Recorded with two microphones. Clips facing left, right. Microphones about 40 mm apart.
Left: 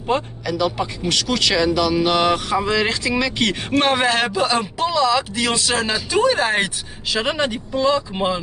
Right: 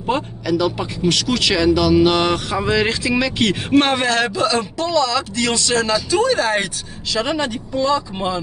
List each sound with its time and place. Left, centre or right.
0.0 s speech: centre
4.0 s a man's voice: centre